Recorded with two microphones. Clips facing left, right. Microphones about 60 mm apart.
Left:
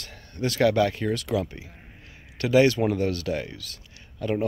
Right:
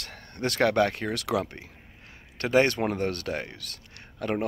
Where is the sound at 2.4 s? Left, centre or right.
Right.